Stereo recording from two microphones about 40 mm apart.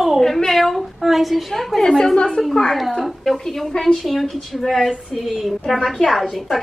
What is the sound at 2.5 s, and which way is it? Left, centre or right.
Speech, centre.